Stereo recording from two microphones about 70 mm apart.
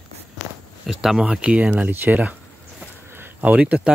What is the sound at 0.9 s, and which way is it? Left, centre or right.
Speech, centre.